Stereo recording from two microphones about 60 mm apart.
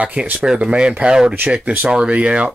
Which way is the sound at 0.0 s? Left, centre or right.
Centre.